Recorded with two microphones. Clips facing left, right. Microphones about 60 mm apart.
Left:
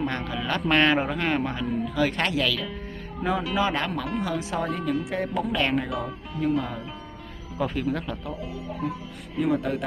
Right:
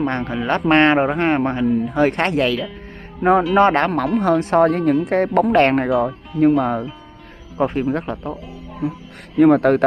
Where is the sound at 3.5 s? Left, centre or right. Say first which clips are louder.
Right 11 dB; right.